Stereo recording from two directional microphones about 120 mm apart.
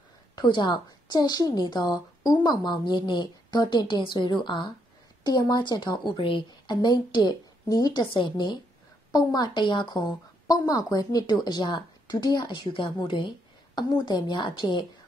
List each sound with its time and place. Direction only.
0.4 s a woman's voice: 40° left (ahead or behind)